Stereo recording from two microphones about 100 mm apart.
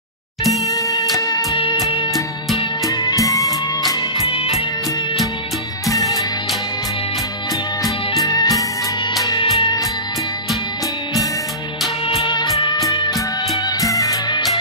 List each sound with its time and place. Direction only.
0.5 s music: 35° left (ahead or behind)
1.5 s music: 55° left (ahead or behind)
2.9 s music: 40° left (ahead or behind)
4.2 s music: 90° left
5.9 s music: 35° left (ahead or behind)
8.2 s music: 40° left (ahead or behind)
13.7 s music: 35° left (ahead or behind)